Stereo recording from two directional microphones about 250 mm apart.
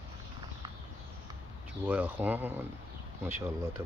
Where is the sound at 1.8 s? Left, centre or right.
Centre.